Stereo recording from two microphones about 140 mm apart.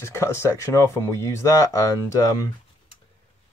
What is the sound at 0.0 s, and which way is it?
Speech, 20° left (ahead or behind).